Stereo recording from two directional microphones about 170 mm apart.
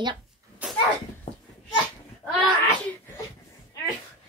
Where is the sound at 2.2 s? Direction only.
5° left (ahead or behind).